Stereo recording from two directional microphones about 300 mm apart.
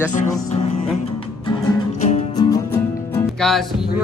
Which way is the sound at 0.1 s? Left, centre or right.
Left.